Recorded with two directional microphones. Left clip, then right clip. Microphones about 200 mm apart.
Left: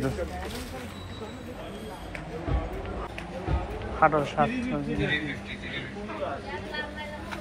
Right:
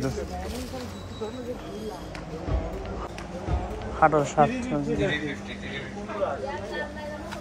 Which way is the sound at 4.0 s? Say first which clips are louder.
Right 3 dB; 15° right (ahead or behind).